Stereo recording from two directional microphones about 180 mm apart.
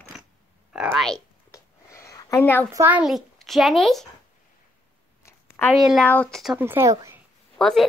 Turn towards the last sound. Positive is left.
turn(degrees=0)  # may be behind; listen again after turning